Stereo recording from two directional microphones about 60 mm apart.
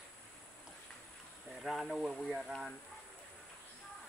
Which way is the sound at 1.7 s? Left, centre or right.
Centre.